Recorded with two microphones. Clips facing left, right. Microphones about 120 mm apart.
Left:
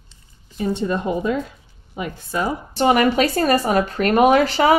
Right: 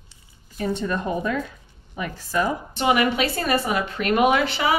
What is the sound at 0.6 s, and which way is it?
Speech, 25° left (ahead or behind).